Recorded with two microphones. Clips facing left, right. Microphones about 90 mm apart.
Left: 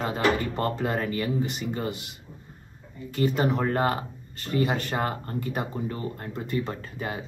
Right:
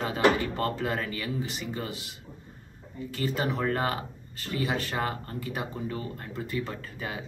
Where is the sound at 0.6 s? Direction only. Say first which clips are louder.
Left 2 dB; 30° left (ahead or behind).